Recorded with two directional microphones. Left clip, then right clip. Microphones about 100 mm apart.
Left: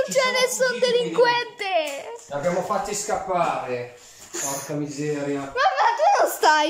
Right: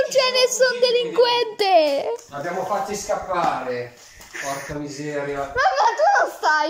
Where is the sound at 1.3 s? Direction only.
45° right (ahead or behind).